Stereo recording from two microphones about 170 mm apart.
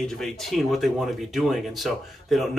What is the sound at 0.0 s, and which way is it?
Speech, centre (ahead or behind).